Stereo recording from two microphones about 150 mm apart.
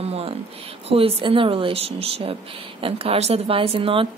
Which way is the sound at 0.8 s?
40° right (ahead or behind).